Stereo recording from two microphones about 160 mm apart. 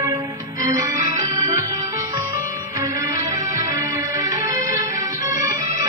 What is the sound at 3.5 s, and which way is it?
Music, 20° right (ahead or behind).